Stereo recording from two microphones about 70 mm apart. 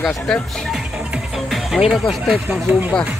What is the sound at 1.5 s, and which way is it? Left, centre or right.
Speech, centre.